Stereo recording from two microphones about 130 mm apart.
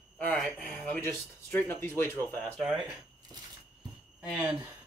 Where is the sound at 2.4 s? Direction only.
Centre (ahead or behind).